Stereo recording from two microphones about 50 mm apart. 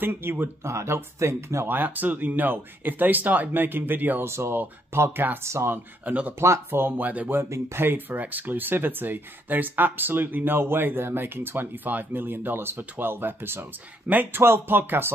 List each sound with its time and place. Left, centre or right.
0.0 s speech: right
0.7 s speech: right
1.7 s speech: right
4.2 s speech: right
5.1 s speech: right
5.4 s speech: right
6.0 s speech: right
6.7 s speech: right
7.4 s speech: right
7.8 s speech: right